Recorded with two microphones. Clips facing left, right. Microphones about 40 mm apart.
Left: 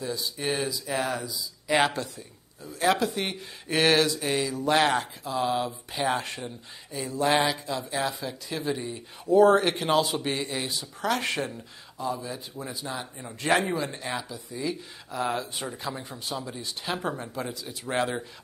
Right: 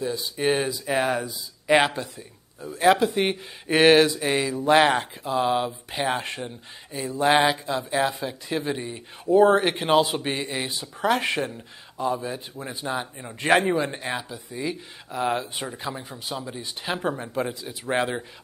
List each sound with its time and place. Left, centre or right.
0.0 s speech: right
1.8 s speech: centre
2.1 s speech: right
15.6 s speech: centre